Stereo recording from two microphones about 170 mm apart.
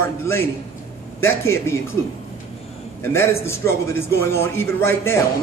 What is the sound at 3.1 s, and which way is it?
A man's voice, 15° left (ahead or behind).